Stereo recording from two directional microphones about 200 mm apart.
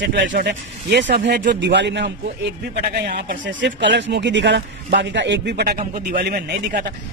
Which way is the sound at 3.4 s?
60° right (ahead or behind).